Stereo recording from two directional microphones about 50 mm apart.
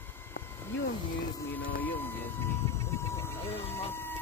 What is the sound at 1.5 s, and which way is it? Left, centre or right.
Vehicle, left.